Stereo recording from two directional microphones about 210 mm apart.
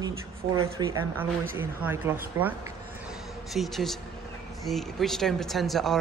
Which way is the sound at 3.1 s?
Centre (ahead or behind).